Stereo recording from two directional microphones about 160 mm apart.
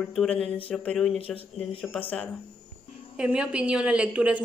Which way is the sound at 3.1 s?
5° right (ahead or behind).